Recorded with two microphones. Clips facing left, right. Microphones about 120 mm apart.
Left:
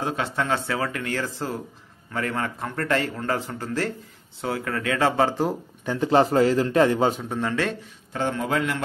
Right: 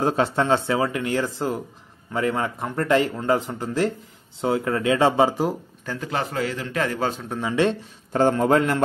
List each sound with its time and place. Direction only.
0.0 s speech: 35° right (ahead or behind)
5.9 s a man's voice: 30° left (ahead or behind)
7.2 s speech: 5° right (ahead or behind)
8.1 s a man's voice: 45° right (ahead or behind)